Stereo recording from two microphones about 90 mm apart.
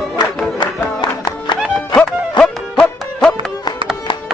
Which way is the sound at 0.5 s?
60° left (ahead or behind).